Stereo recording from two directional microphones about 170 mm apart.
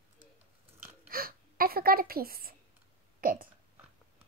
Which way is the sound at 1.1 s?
60° right (ahead or behind).